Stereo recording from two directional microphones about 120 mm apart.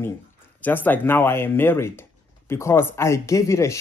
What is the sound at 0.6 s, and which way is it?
Speech, 15° left (ahead or behind).